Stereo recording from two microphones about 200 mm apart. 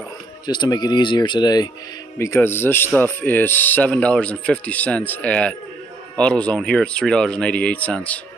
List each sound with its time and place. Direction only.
0.5 s speech: 20° left (ahead or behind)